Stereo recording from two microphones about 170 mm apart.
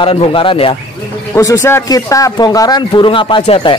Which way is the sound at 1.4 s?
15° left (ahead or behind).